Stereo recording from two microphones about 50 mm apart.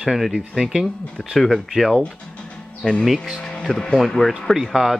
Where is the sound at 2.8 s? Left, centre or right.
Centre.